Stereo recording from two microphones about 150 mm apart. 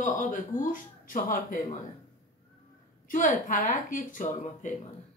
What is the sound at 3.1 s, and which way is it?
A woman's voice, 60° left (ahead or behind).